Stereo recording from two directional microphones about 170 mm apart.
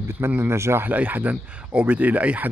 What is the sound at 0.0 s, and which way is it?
Speech, 15° right (ahead or behind).